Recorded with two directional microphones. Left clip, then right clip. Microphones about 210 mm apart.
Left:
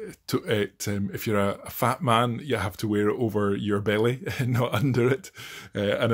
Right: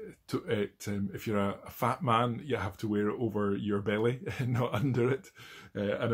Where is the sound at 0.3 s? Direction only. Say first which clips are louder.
Left 7 dB; 40° left (ahead or behind).